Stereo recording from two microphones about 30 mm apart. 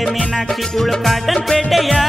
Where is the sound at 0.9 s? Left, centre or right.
Centre.